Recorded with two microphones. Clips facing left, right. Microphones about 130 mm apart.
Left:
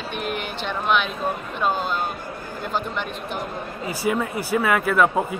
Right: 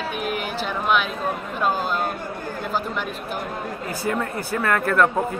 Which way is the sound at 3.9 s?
10° left (ahead or behind).